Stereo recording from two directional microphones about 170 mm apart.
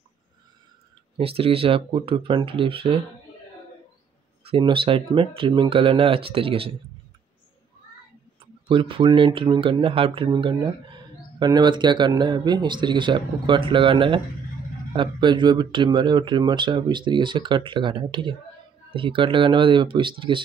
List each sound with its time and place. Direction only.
1.1 s speech: 35° right (ahead or behind)
4.5 s speech: 30° right (ahead or behind)
8.6 s speech: 30° right (ahead or behind)